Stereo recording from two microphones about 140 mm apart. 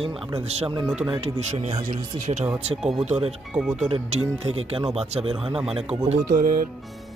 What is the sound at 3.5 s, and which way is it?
Speech, 5° right (ahead or behind).